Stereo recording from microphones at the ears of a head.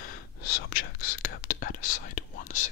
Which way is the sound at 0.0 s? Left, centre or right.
Left.